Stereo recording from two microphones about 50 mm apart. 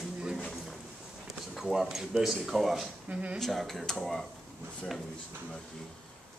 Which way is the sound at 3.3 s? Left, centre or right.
Centre.